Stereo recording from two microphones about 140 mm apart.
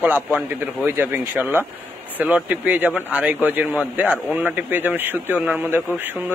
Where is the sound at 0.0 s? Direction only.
10° right (ahead or behind).